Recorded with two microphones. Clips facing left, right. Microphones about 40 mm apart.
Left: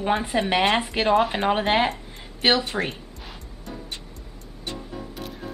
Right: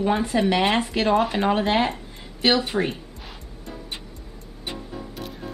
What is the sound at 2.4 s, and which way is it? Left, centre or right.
Speech, left.